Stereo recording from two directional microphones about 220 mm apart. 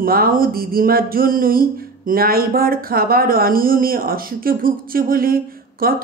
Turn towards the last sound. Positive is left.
turn(degrees=-40)  # may be behind; listen again after turning